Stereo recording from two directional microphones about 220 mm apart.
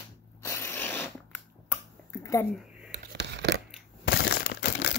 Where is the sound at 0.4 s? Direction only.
10° left (ahead or behind).